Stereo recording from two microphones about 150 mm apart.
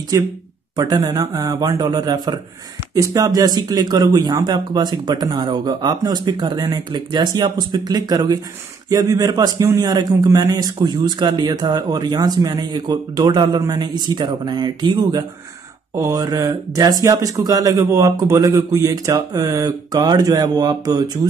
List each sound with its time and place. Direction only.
0.1 s a man's voice: 20° right (ahead or behind)